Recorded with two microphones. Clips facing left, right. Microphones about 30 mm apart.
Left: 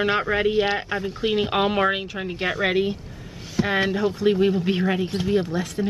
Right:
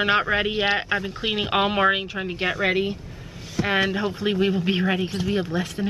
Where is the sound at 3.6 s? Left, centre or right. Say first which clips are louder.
Left 1 dB; centre.